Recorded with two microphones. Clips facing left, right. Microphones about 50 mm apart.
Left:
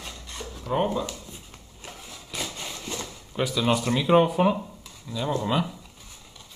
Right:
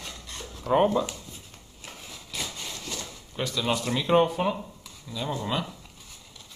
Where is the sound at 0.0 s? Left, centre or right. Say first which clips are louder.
Left 2 dB; centre.